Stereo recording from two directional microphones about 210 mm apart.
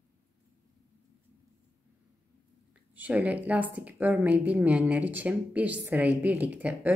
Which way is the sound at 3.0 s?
5° right (ahead or behind).